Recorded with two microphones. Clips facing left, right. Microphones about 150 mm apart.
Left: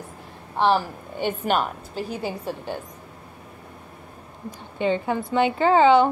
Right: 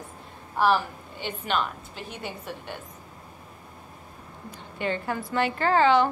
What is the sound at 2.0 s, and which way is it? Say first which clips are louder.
Speech: left 10 dB; 35° left (ahead or behind).